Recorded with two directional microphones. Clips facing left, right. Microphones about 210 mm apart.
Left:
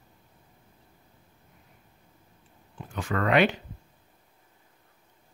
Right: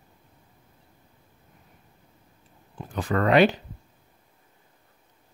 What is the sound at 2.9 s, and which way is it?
Speech, 35° right (ahead or behind).